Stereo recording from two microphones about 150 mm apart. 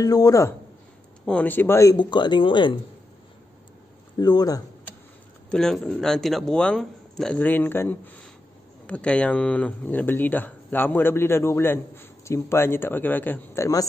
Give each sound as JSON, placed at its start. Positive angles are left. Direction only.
{"t": 0.0, "sound": "speech", "side_deg": 25}
{"t": 1.2, "sound": "speech", "side_deg": 10}
{"t": 4.2, "sound": "speech", "side_deg": 25}
{"t": 5.5, "sound": "speech", "side_deg": 5}